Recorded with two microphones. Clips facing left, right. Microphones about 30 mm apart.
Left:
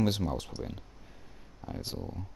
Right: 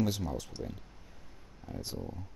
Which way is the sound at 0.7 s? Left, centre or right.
Left.